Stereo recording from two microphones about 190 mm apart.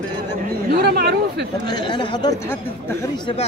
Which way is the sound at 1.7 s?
25° left (ahead or behind).